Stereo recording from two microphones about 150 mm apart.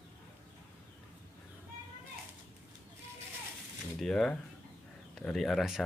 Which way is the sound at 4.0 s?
5° left (ahead or behind).